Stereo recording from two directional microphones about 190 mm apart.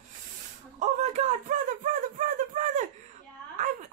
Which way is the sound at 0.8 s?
35° right (ahead or behind).